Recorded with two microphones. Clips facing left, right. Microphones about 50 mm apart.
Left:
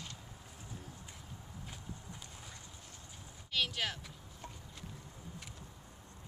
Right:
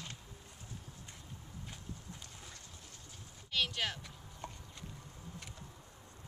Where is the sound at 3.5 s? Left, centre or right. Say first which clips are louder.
Even; centre.